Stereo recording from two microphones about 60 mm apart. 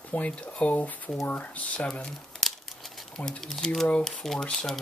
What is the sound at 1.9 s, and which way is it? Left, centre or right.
Speech, centre.